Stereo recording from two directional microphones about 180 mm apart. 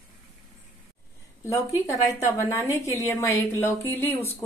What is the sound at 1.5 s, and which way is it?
A woman's voice, 20° left (ahead or behind).